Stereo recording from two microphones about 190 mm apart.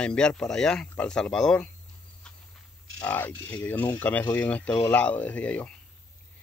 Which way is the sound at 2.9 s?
10° left (ahead or behind).